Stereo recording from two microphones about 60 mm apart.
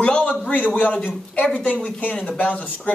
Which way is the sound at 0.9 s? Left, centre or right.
Centre.